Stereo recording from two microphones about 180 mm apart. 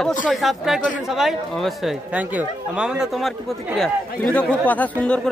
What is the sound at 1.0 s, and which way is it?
A man's voice, centre (ahead or behind).